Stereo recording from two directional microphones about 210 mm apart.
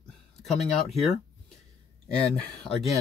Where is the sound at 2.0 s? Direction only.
5° left (ahead or behind).